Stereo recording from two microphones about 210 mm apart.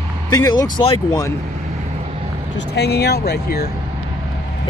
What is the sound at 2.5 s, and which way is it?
Speech, 50° left (ahead or behind).